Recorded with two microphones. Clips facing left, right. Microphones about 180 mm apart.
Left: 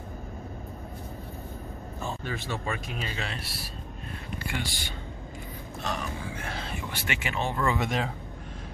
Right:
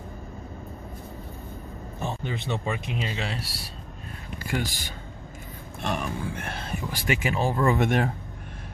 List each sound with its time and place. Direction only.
2.0 s speech: 20° right (ahead or behind)
4.5 s speech: 40° right (ahead or behind)
5.8 s speech: 55° right (ahead or behind)
6.9 s speech: 35° right (ahead or behind)
7.8 s speech: 55° right (ahead or behind)